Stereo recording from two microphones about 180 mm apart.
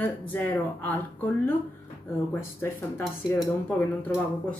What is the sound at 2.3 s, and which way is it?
A woman's voice, 15° left (ahead or behind).